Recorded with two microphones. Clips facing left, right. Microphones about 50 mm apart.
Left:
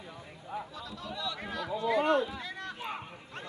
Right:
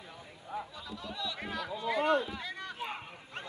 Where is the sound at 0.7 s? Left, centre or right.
Centre.